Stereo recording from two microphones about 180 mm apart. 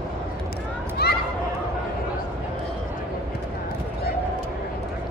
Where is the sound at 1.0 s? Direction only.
60° left (ahead or behind).